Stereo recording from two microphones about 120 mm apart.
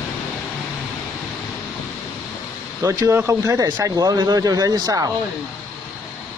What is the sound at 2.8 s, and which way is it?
Speech, 25° right (ahead or behind).